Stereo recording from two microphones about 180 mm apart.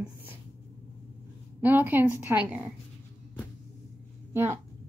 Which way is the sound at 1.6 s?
10° right (ahead or behind).